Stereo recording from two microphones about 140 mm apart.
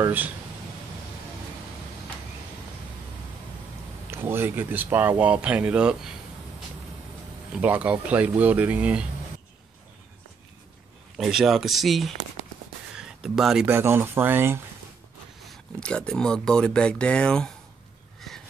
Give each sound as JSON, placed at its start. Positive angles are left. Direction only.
{"t": 4.1, "sound": "speech", "side_deg": -15}
{"t": 7.5, "sound": "speech", "side_deg": -10}
{"t": 11.1, "sound": "speech", "side_deg": 0}
{"t": 12.9, "sound": "a sound", "side_deg": -5}
{"t": 13.7, "sound": "speech", "side_deg": -15}
{"t": 15.4, "sound": "speech", "side_deg": 5}